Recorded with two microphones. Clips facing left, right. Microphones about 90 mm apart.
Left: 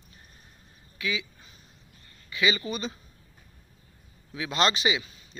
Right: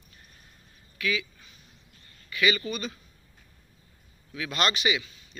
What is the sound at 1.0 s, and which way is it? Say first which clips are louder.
Speech: right 2 dB; 25° left (ahead or behind).